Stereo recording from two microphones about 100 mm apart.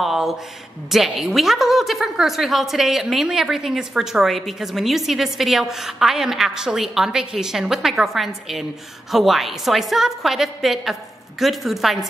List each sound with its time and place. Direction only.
0.0 s a woman's voice: centre (ahead or behind)